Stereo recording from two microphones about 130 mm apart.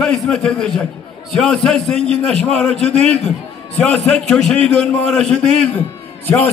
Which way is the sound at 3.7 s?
5° left (ahead or behind).